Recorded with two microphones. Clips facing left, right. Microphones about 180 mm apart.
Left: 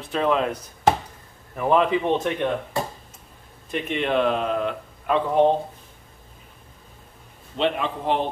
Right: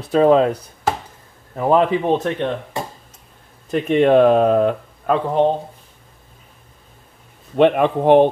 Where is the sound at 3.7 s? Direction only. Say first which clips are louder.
Right 10 dB; 45° right (ahead or behind).